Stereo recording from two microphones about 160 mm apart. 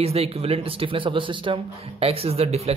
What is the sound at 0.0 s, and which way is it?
Speech, 40° right (ahead or behind).